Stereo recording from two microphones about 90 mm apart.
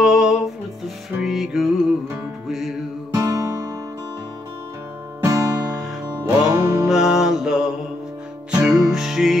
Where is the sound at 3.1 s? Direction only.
40° right (ahead or behind).